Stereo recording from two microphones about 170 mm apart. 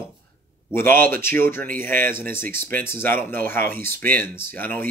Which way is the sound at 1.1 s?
15° left (ahead or behind).